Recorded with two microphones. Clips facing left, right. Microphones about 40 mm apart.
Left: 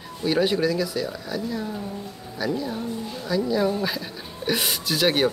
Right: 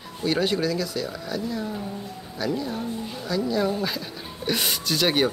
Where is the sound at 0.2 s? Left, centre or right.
Centre.